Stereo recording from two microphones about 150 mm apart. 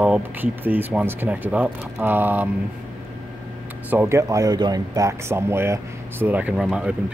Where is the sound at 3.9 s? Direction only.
15° right (ahead or behind).